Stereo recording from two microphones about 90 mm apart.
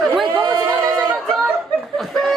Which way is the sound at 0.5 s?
30° right (ahead or behind).